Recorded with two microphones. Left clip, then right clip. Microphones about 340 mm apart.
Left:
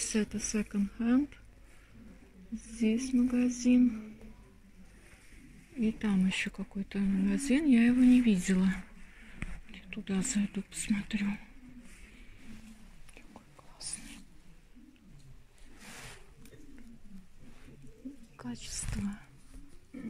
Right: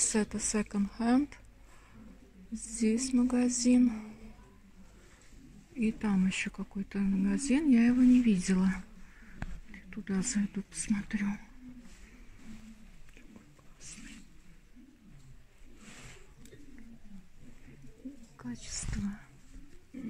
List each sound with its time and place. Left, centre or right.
0.1 s speech: centre
2.8 s a sound: right
3.2 s speech: centre
3.4 s a sound: right
5.8 s speech: centre
9.7 s whispering: centre
10.3 s speech: centre
18.4 s speech: centre